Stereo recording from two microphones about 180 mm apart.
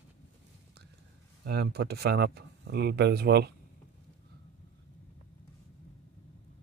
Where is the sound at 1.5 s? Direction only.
65° right (ahead or behind).